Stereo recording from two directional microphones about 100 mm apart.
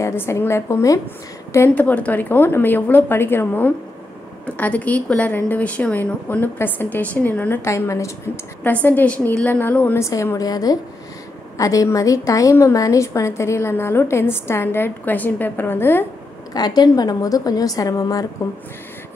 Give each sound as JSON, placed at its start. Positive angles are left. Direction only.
{"t": 0.0, "sound": "a woman's voice", "side_deg": 25}
{"t": 7.6, "sound": "a woman's voice", "side_deg": 30}
{"t": 8.6, "sound": "a woman's voice", "side_deg": 20}
{"t": 9.9, "sound": "a woman's voice", "side_deg": 30}
{"t": 16.5, "sound": "a woman's voice", "side_deg": 40}